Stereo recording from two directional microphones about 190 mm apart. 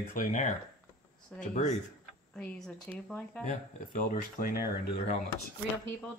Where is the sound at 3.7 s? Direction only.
45° left (ahead or behind).